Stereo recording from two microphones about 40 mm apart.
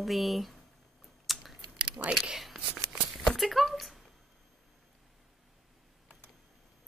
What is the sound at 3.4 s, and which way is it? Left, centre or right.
Speech, centre.